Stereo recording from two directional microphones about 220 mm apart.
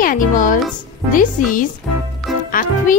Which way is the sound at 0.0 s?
40° left (ahead or behind).